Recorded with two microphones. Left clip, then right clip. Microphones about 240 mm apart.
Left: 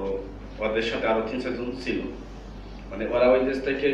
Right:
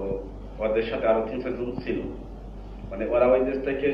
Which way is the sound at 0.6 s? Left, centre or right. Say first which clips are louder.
Right 1 dB; left.